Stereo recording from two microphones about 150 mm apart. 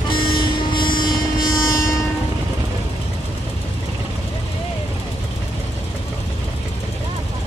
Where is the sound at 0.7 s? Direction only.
30° left (ahead or behind).